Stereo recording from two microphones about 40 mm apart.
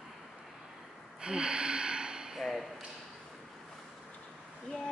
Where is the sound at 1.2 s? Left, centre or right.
Right.